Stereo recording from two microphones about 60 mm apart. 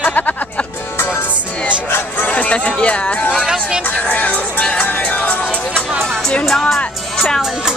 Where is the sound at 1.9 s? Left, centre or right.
Left.